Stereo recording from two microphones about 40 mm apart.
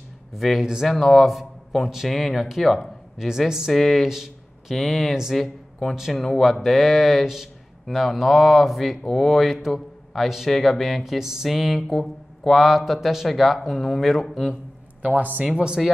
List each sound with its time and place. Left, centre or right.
0.3 s speech: centre
15.0 s a man's voice: right
15.4 s speech: right